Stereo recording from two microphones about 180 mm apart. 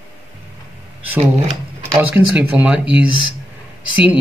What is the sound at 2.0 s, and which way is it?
A man's voice, 10° right (ahead or behind).